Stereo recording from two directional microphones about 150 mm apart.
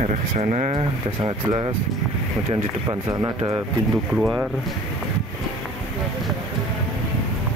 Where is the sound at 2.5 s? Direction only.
25° right (ahead or behind).